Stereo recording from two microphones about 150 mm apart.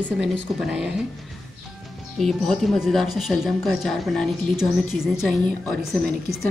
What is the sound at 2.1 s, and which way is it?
Speech, 5° left (ahead or behind).